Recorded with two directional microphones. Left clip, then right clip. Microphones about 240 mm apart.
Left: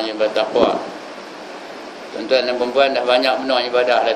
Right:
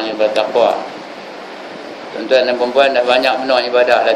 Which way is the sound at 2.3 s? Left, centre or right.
Centre.